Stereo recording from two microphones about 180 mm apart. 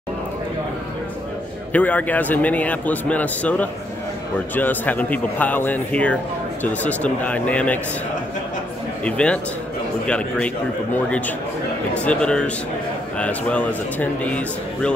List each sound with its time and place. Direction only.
1.7 s a man's voice: 10° left (ahead or behind)
9.0 s a man's voice: 5° left (ahead or behind)